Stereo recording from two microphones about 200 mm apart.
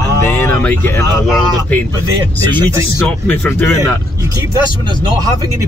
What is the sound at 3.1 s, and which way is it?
Speech, 10° left (ahead or behind).